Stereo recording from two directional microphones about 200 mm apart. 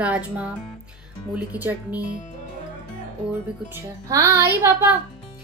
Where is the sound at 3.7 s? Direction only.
15° right (ahead or behind).